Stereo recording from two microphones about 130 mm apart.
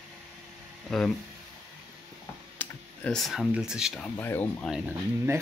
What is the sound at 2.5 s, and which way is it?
Speech, 5° left (ahead or behind).